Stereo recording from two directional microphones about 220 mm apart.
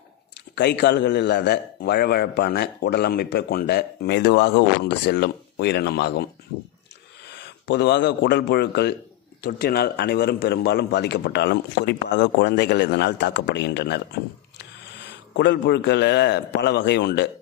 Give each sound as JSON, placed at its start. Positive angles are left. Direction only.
{"t": 0.6, "sound": "a man's voice", "side_deg": 50}
{"t": 7.2, "sound": "a man's voice", "side_deg": 50}
{"t": 15.3, "sound": "a man's voice", "side_deg": 50}